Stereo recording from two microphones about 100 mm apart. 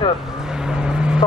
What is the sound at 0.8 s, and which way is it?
Vehicle, 10° right (ahead or behind).